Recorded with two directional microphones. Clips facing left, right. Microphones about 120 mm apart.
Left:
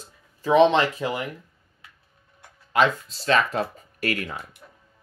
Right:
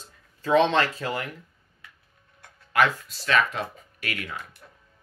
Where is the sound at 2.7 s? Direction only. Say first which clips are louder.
Left 2 dB; 25° left (ahead or behind); by 4.4 s 40° left (ahead or behind).